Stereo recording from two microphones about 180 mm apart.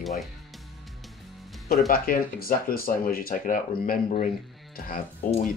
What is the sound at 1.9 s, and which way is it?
Speech, 55° left (ahead or behind).